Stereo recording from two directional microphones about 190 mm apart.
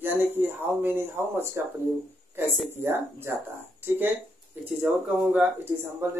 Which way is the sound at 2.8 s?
10° right (ahead or behind).